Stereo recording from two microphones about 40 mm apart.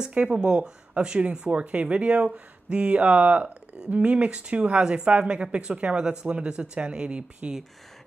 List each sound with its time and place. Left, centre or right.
0.1 s speech: right